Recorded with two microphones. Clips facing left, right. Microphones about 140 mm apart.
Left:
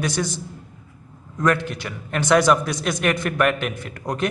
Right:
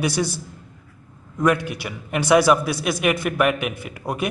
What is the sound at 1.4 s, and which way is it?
A man's voice, 10° right (ahead or behind).